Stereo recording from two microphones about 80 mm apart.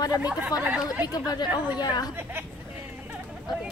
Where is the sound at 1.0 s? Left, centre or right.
Left.